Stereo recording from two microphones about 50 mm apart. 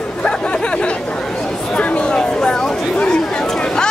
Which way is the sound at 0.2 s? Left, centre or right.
Left.